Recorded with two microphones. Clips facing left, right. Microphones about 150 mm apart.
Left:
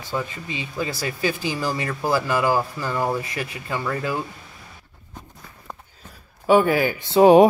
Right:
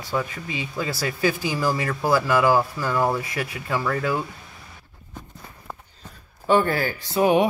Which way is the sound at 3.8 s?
25° left (ahead or behind).